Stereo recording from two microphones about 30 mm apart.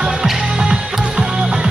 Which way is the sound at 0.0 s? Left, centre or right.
Right.